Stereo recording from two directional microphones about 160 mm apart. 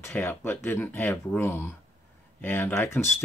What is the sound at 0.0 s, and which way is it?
Speech, 15° left (ahead or behind).